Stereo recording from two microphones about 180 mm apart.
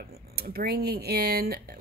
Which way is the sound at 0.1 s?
60° right (ahead or behind).